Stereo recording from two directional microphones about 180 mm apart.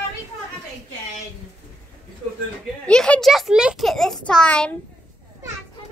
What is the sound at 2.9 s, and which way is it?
A woman's voice, 5° left (ahead or behind).